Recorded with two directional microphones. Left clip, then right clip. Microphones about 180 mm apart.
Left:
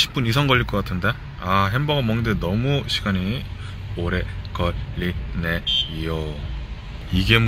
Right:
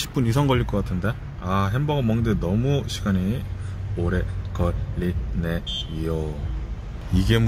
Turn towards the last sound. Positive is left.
turn(degrees=-20)  # may be behind; listen again after turning